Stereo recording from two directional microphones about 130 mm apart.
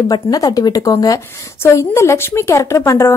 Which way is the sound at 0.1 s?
30° left (ahead or behind).